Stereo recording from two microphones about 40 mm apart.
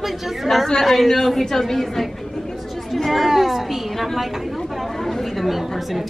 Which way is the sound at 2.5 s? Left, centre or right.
Centre.